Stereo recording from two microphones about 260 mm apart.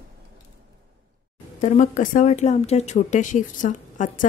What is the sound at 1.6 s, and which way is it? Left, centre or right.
A woman's voice, left.